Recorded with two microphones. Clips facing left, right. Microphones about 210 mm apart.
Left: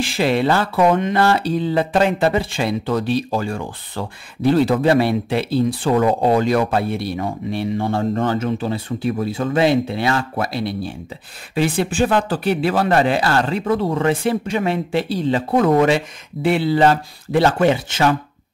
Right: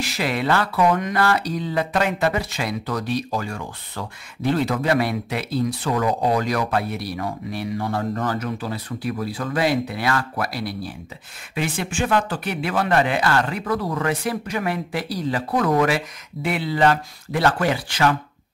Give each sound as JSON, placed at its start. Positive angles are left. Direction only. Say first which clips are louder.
{"t": 0.0, "sound": "speech", "louder": "left 6 dB", "side_deg": 30}